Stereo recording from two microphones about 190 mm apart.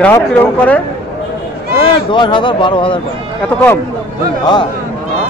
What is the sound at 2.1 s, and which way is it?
Speech, 25° left (ahead or behind).